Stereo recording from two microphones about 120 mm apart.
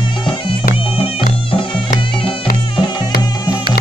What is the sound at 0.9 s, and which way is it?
Music, 50° left (ahead or behind).